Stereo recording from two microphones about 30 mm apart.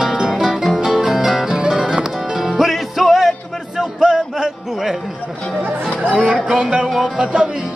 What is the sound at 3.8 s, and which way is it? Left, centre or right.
Music, right.